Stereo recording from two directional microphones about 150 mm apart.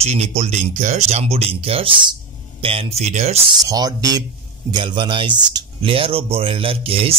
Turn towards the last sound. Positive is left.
turn(degrees=-40)  # may be behind; listen again after turning